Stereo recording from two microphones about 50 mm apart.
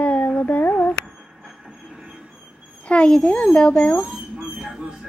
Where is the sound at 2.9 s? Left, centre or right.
Centre.